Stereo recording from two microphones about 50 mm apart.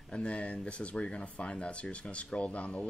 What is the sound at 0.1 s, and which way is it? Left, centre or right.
Speech, left.